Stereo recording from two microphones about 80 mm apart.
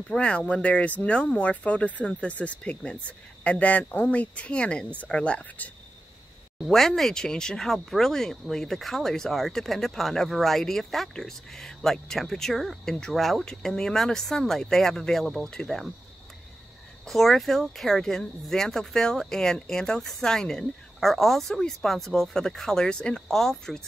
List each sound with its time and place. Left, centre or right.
0.1 s speech: centre
6.6 s speech: centre
17.0 s speech: centre